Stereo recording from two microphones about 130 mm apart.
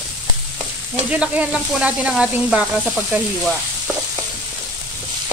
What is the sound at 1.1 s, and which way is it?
Sizzle, 10° right (ahead or behind).